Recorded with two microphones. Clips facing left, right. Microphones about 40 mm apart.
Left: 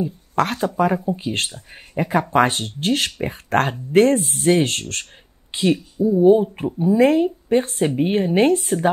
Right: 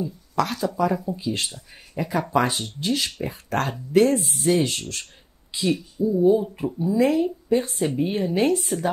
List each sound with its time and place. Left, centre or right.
0.0 s speech: left